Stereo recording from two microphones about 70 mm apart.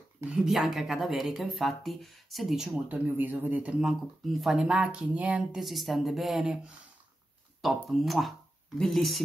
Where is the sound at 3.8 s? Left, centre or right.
Centre.